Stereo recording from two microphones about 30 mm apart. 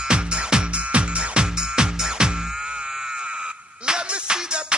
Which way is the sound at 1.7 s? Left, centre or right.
Right.